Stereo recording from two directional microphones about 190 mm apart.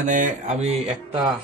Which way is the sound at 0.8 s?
30° right (ahead or behind).